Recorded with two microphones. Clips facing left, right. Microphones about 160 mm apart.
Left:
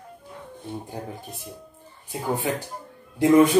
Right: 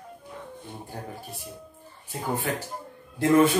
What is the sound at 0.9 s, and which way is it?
Speech, 20° left (ahead or behind).